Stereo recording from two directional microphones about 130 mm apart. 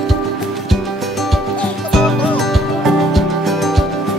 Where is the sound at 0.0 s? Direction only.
Centre (ahead or behind).